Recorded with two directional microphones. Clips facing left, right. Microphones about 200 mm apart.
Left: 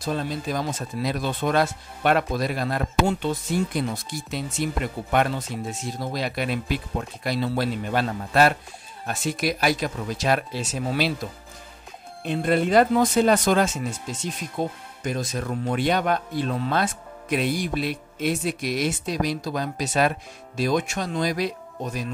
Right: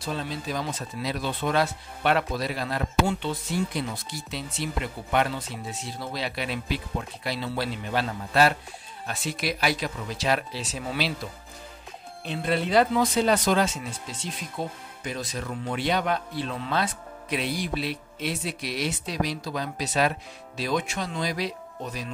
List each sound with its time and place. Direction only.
0.0 s speech: 45° left (ahead or behind)
12.3 s speech: 50° left (ahead or behind)